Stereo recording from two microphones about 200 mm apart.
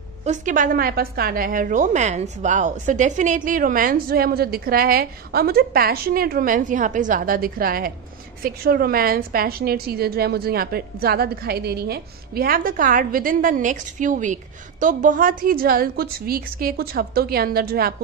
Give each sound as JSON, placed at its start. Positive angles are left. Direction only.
{"t": 0.2, "sound": "a woman's voice", "side_deg": -40}